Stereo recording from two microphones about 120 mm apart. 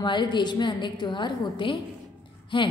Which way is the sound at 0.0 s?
40° left (ahead or behind).